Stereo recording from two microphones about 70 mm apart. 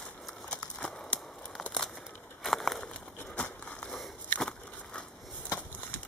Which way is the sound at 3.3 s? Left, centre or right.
Centre.